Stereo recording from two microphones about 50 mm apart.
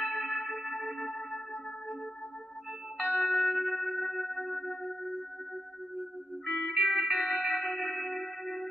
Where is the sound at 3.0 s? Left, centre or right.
Right.